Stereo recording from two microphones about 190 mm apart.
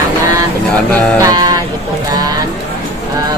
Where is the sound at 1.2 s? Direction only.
20° right (ahead or behind).